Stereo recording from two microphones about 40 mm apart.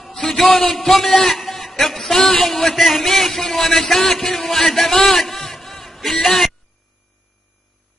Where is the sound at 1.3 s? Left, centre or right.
Centre.